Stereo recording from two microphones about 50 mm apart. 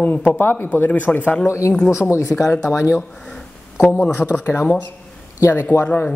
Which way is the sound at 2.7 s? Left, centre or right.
Left.